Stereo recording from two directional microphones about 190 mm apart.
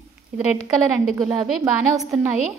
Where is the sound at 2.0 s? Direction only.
Centre (ahead or behind).